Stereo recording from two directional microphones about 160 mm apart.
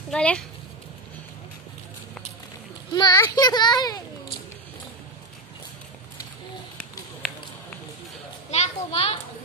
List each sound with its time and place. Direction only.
0.1 s speech: 5° left (ahead or behind)
2.9 s a child's voice: 25° left (ahead or behind)
6.8 s a sound: centre (ahead or behind)
8.5 s children playing: 40° left (ahead or behind)